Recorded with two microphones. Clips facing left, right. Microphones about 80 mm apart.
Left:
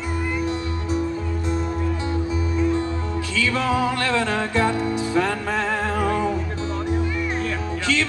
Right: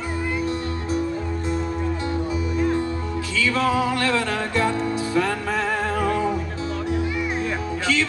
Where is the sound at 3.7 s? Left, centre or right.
Centre.